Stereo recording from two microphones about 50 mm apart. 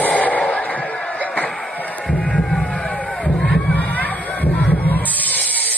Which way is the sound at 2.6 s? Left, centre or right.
Left.